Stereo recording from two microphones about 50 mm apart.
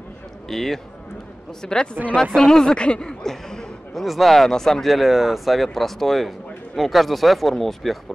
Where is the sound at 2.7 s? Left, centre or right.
Centre.